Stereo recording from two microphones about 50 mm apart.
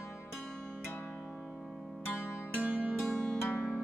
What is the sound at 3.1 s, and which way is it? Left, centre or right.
Music, centre.